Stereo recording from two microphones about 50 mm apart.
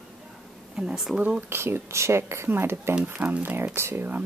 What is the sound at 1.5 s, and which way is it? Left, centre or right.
Speech, right.